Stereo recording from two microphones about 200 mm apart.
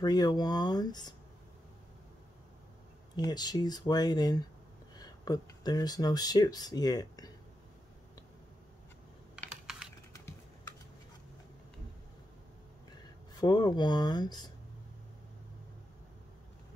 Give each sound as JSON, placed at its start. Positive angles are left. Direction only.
{"t": 0.0, "sound": "speech", "side_deg": 20}
{"t": 3.2, "sound": "speech", "side_deg": 20}
{"t": 9.5, "sound": "computer keyboard", "side_deg": -5}
{"t": 13.3, "sound": "speech", "side_deg": 20}